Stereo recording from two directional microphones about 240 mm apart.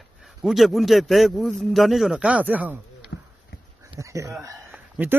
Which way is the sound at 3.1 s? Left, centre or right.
Left.